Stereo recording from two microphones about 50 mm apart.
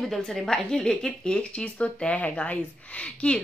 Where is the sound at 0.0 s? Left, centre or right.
Centre.